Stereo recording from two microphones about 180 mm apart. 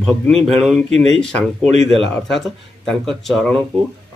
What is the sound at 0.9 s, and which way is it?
Speech, 35° right (ahead or behind).